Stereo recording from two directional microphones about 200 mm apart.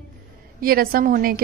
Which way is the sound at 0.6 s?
50° right (ahead or behind).